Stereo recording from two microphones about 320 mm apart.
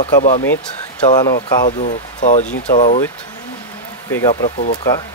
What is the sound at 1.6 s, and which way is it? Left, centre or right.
Speech, left.